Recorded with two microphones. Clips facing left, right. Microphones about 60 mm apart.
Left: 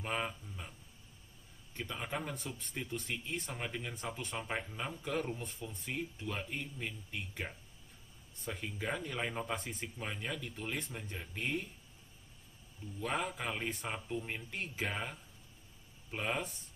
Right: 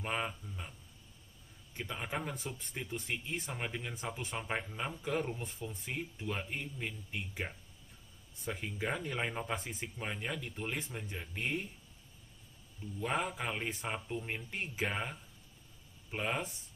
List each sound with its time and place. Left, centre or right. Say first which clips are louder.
0.0 s speech: right 1 dB; centre
1.8 s speech: right 1 dB; centre
8.5 s speech: right 1 dB; centre
13.1 s speech: right 1 dB; centre
14.1 s speech: even; right
14.5 s speech: right 2 dB; centre
16.1 s speech: right 1 dB; centre